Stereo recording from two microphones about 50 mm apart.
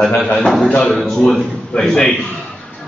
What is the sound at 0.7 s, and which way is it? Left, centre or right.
Speech, left.